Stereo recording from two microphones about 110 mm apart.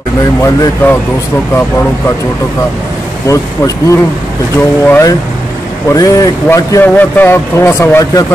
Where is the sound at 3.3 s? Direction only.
30° left (ahead or behind).